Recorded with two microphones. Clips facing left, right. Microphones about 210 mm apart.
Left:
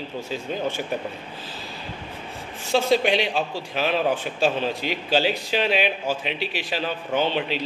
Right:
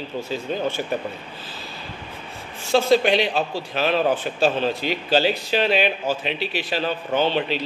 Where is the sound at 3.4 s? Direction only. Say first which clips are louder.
Right 2 dB; 10° left (ahead or behind).